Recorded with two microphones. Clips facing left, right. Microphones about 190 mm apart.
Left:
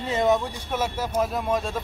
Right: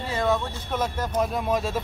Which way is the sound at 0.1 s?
20° left (ahead or behind).